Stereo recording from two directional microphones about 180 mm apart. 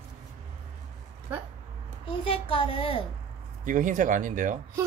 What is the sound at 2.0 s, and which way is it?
Speech, 30° left (ahead or behind).